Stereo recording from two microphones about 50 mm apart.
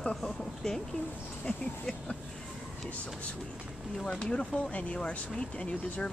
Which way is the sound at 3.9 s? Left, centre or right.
Centre.